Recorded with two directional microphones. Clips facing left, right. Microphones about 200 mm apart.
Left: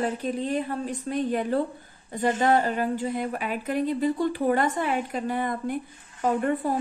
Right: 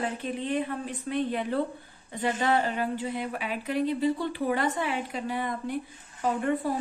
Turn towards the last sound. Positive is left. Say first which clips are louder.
# left 3 dB
turn(degrees=45)  # may be behind; listen again after turning